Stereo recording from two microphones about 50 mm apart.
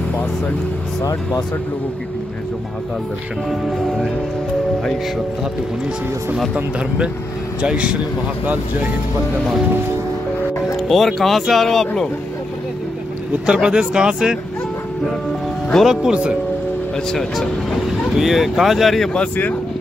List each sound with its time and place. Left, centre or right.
3.4 s speech: centre
7.6 s speech: right
10.8 s speech: centre
13.5 s speech: centre
15.8 s speech: centre
16.1 s speech: right
16.9 s speech: centre
17.8 s speech: centre